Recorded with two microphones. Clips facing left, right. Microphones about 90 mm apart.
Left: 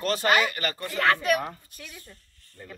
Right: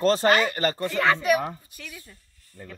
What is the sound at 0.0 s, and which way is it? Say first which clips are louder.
Speech: right 3 dB; 30° right (ahead or behind).